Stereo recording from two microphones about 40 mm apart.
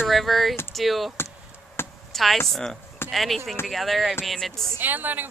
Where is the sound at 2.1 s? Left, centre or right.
Centre.